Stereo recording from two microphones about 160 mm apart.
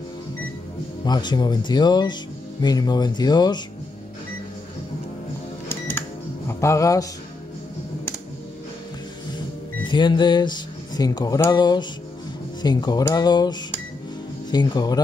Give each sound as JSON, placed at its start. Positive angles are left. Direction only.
{"t": 1.0, "sound": "speech", "side_deg": 25}
{"t": 5.7, "sound": "cash register", "side_deg": 15}
{"t": 9.8, "sound": "speech", "side_deg": 30}